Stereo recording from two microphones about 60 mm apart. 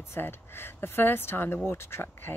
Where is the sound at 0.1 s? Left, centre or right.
Left.